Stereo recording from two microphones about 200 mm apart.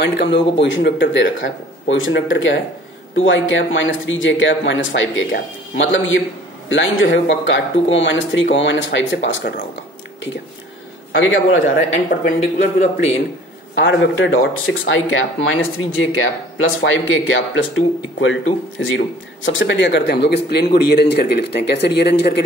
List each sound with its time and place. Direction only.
0.0 s speech: 60° left (ahead or behind)
1.4 s speech: 75° left (ahead or behind)
11.1 s speech: 70° left (ahead or behind)
11.9 s speech: 40° left (ahead or behind)
13.7 s speech: 65° left (ahead or behind)